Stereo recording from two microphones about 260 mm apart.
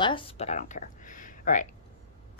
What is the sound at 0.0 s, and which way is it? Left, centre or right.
Speech, left.